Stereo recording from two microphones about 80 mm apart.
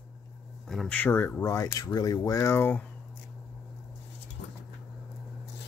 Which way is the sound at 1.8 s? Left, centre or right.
Left.